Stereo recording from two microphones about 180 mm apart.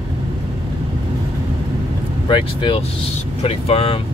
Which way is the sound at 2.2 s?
30° left (ahead or behind).